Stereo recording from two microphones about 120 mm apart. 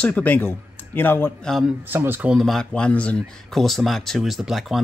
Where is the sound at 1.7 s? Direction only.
15° right (ahead or behind).